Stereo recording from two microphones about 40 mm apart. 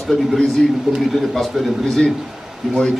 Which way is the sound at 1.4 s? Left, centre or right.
Centre.